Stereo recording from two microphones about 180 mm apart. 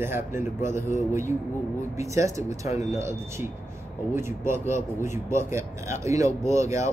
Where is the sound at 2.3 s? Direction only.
15° right (ahead or behind).